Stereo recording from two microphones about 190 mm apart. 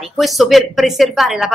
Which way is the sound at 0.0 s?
Centre (ahead or behind).